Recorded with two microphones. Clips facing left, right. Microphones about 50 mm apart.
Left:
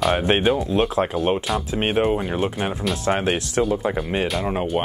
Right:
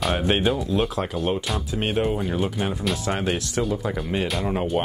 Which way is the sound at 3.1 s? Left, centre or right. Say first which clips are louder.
Left 7 dB; left.